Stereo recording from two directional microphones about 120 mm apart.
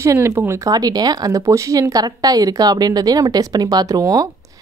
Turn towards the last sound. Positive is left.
turn(degrees=-30)  # may be behind; listen again after turning